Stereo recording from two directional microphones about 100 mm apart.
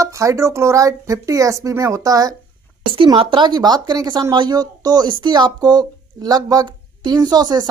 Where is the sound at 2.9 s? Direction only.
60° right (ahead or behind); by 7.6 s 45° right (ahead or behind).